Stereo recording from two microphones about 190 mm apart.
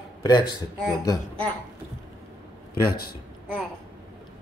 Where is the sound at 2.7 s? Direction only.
50° left (ahead or behind).